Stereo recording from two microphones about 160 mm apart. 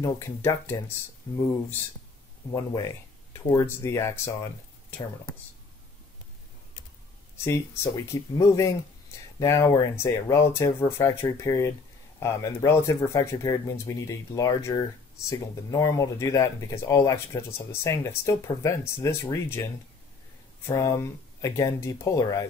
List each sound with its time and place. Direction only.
0.0 s speech: 20° left (ahead or behind)
2.5 s speech: 20° left (ahead or behind)
7.3 s speech: 15° left (ahead or behind)
20.6 s speech: 20° left (ahead or behind)